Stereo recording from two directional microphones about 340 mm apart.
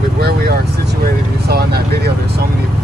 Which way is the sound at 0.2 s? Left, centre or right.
Right.